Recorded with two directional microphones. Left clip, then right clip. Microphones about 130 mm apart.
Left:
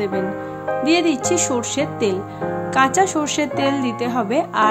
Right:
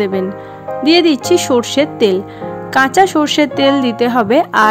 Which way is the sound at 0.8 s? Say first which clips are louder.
Right 8 dB; 45° right (ahead or behind).